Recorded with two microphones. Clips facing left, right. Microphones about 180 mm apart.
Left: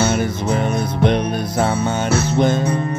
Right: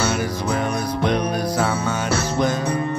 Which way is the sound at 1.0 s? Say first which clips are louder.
Left 3 dB; 25° left (ahead or behind).